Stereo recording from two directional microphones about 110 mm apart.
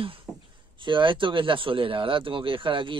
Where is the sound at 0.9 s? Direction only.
50° right (ahead or behind).